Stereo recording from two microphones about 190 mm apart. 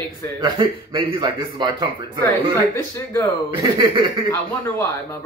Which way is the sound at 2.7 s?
15° left (ahead or behind).